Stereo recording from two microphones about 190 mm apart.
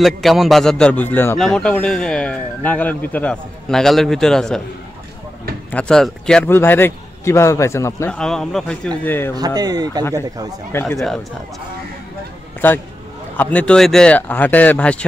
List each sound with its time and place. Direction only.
0.0 s a man's voice: centre (ahead or behind)
5.7 s a man's voice: 5° left (ahead or behind)
8.1 s a man's voice: 5° left (ahead or behind)
9.6 s speech: 20° right (ahead or behind)
10.7 s a man's voice: 10° left (ahead or behind)
12.6 s a man's voice: 10° left (ahead or behind)